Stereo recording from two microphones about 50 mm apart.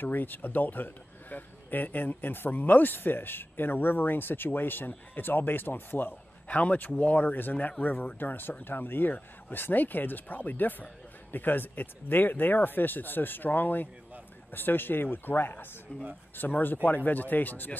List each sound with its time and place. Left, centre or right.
0.0 s speech: left